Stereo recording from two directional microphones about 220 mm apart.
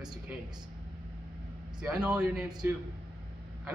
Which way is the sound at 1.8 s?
5° right (ahead or behind).